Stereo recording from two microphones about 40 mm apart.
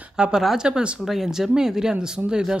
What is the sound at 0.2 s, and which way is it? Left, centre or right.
Speech, right.